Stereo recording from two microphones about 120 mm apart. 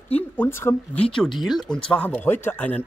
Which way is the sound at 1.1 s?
Centre (ahead or behind).